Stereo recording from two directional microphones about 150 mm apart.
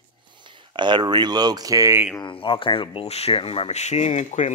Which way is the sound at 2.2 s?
35° left (ahead or behind).